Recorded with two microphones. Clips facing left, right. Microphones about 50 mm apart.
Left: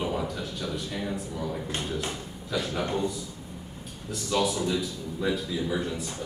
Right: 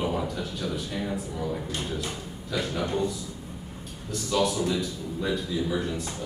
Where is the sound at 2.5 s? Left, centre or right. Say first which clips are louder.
Even; centre.